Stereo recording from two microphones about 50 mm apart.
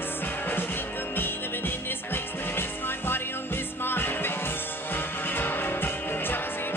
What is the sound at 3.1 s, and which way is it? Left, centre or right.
Music, left.